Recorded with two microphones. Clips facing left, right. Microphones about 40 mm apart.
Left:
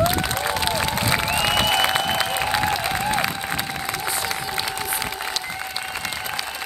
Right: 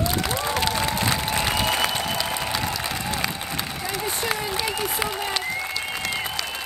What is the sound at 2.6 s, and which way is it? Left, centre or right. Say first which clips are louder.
Applause: left 5 dB; left.